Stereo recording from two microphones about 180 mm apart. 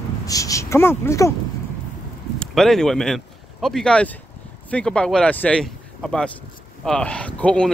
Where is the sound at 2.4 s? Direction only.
5° left (ahead or behind).